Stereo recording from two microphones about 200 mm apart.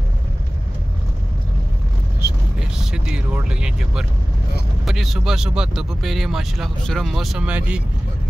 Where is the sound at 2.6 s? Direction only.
5° right (ahead or behind).